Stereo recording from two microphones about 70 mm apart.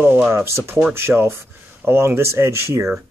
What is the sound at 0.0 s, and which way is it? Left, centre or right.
Speech, right.